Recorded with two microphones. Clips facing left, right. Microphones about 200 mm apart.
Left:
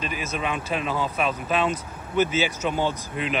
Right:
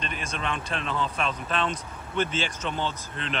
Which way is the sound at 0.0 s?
5° left (ahead or behind).